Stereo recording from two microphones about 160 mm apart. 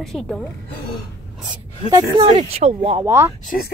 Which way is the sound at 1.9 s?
25° right (ahead or behind).